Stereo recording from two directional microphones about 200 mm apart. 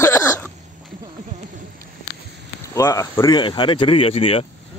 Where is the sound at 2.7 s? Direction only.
15° left (ahead or behind).